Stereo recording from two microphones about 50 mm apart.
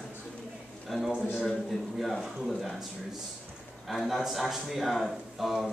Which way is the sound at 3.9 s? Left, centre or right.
Centre.